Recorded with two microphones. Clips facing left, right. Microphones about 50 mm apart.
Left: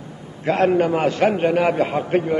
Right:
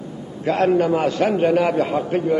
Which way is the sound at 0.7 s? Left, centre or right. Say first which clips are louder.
Even; left.